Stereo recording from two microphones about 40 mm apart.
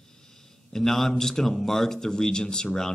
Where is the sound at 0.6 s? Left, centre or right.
Centre.